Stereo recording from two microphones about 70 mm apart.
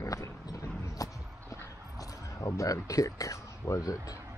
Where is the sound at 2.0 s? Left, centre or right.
Left.